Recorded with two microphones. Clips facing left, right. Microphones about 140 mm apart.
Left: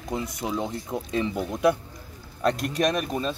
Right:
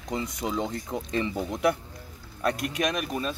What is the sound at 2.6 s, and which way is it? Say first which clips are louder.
Speech: left 4 dB; 35° left (ahead or behind).